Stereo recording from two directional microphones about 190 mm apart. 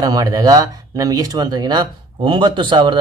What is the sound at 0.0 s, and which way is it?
Speech, 20° right (ahead or behind).